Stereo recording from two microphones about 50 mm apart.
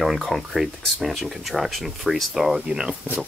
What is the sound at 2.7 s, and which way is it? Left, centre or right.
Speech, centre.